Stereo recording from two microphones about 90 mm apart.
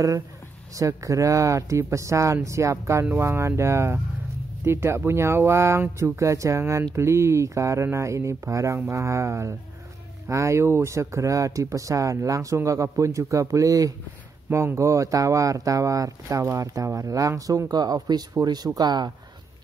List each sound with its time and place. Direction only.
0.7 s speech: 35° right (ahead or behind)